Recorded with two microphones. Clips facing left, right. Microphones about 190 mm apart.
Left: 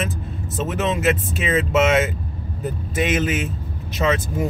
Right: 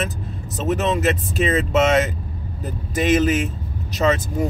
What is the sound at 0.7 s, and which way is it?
Speech, 40° right (ahead or behind).